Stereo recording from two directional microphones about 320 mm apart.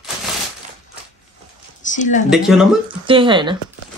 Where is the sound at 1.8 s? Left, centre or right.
Left.